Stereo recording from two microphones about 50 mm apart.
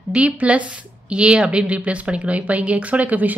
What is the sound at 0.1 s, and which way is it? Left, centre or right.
Speech, right.